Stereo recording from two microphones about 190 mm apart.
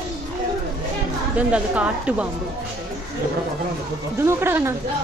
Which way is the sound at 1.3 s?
5° right (ahead or behind).